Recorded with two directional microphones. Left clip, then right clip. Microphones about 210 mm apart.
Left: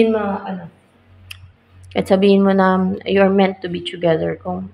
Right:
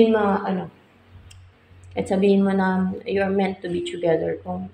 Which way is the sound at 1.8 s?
20° left (ahead or behind).